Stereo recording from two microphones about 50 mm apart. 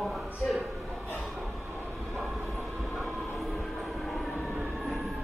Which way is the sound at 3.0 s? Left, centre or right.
Centre.